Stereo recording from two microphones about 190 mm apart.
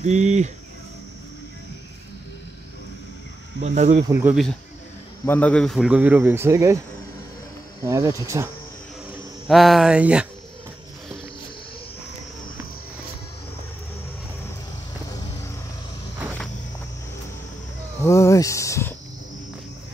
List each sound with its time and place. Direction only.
0.0 s speech: 40° right (ahead or behind)
3.6 s speech: 40° right (ahead or behind)
4.1 s speech: 10° right (ahead or behind)
5.2 s speech: 10° left (ahead or behind); by 6.8 s 15° right (ahead or behind)
7.8 s speech: 15° right (ahead or behind)
9.5 s a sound: centre (ahead or behind)
18.0 s a sound: 15° left (ahead or behind)